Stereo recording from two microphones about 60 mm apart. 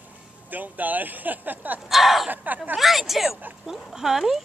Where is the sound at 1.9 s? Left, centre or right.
Centre.